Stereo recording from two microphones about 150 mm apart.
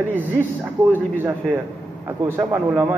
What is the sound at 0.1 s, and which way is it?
Speech, 10° right (ahead or behind).